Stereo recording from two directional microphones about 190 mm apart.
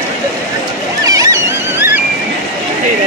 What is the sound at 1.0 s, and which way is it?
Boat, 20° right (ahead or behind).